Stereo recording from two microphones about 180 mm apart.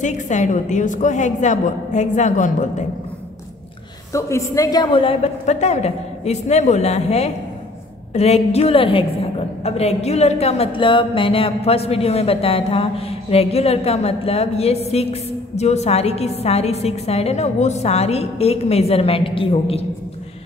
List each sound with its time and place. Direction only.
0.0 s a woman's voice: 40° left (ahead or behind)
4.1 s a woman's voice: 15° left (ahead or behind); by 19.9 s 30° left (ahead or behind)